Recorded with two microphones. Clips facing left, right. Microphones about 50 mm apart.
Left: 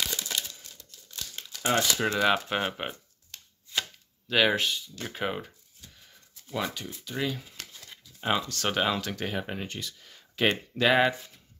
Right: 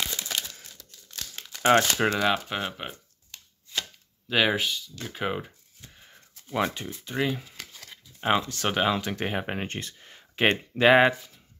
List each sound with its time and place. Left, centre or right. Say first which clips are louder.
1.6 s speech: right 6 dB; right
2.0 s speech: even; centre
4.3 s speech: even; centre
4.7 s speech: even; left
5.1 s speech: right 2 dB; centre
5.8 s a sound: right 5 dB; right
8.2 s speech: right 3 dB; right
8.6 s speech: right 2 dB; centre
9.0 s speech: right 3 dB; right
9.5 s speech: right 3 dB; right